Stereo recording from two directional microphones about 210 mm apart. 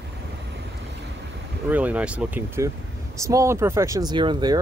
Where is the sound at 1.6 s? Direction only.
5° right (ahead or behind).